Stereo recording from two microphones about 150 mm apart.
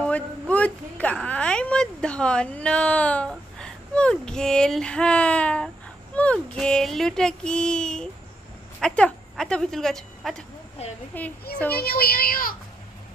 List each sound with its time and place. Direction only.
0.0 s a woman's voice: 10° left (ahead or behind)
6.1 s child singing: 10° left (ahead or behind)
11.1 s a woman's voice: 10° left (ahead or behind)
11.7 s speech: 90° left